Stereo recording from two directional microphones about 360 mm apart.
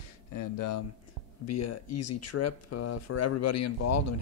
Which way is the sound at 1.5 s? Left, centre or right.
Left.